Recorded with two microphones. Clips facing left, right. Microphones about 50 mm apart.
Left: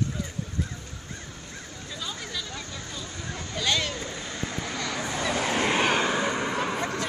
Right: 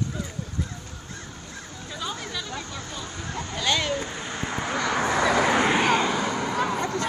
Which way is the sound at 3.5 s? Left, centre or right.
Centre.